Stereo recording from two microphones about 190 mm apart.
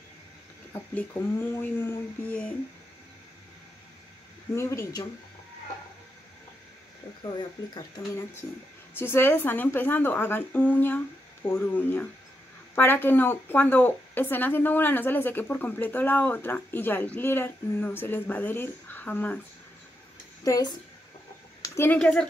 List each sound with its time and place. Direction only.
1.6 s speech: 10° left (ahead or behind)
4.6 s speech: 15° left (ahead or behind)
7.2 s speech: 25° left (ahead or behind)
8.9 s speech: 10° left (ahead or behind)
20.4 s speech: 20° left (ahead or behind)